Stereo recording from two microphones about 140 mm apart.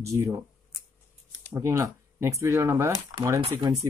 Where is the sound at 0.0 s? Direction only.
20° right (ahead or behind).